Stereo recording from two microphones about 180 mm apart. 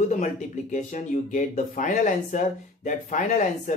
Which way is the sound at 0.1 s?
45° left (ahead or behind).